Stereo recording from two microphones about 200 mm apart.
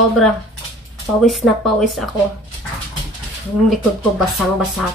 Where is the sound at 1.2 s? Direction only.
Centre (ahead or behind).